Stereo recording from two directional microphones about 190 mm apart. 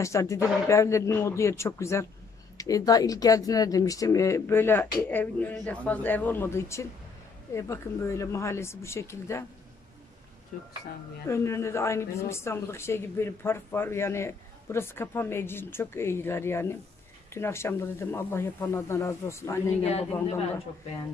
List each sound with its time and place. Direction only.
0.0 s speech: 15° left (ahead or behind)
11.2 s speech: 15° left (ahead or behind)
19.8 s a man's voice: 35° left (ahead or behind)